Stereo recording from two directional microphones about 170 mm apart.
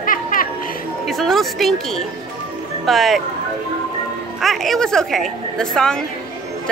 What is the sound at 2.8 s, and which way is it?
Speech, centre (ahead or behind).